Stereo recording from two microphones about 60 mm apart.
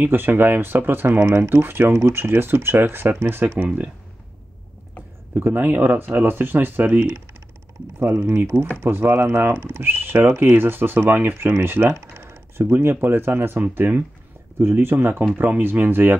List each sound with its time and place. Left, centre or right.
0.0 s speech: right
3.6 s speech: right
5.3 s speech: right
8.4 s speech: right